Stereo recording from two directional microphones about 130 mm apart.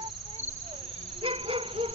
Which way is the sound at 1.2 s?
45° right (ahead or behind).